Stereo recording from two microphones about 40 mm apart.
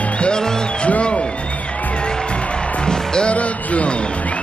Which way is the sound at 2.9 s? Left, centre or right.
Centre.